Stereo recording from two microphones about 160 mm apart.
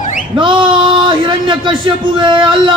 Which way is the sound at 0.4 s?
30° right (ahead or behind).